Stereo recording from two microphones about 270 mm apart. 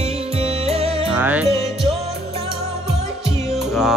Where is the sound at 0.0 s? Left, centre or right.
Right.